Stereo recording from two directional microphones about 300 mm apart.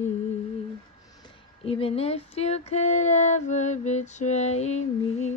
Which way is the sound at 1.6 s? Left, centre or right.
Centre.